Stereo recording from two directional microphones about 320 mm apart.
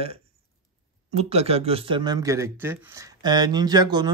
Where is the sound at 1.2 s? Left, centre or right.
Centre.